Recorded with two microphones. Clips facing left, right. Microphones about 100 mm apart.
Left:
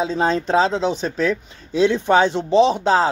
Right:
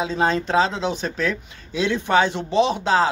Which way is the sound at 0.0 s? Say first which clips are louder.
Left 2 dB; 35° left (ahead or behind).